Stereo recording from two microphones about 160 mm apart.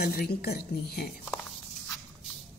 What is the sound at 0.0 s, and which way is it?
A woman's voice, 80° left.